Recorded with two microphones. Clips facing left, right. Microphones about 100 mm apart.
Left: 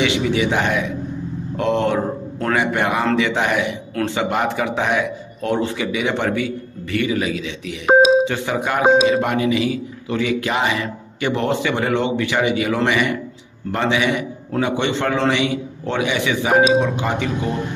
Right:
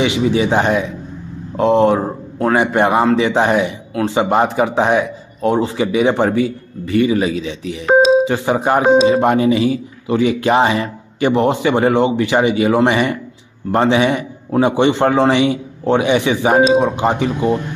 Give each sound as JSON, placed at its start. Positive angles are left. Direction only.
{"t": 0.0, "sound": "a man's voice", "side_deg": -25}
{"t": 3.9, "sound": "a man's voice", "side_deg": -15}
{"t": 4.2, "sound": "a man's voice", "side_deg": -25}